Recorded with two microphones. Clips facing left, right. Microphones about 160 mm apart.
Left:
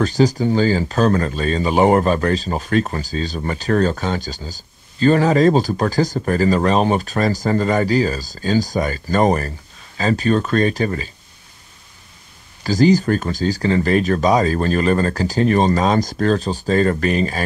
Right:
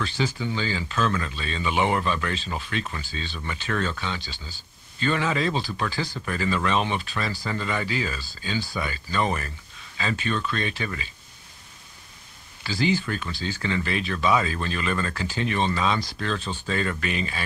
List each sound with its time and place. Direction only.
0.0 s speech: 40° left (ahead or behind)
12.6 s speech: 40° left (ahead or behind)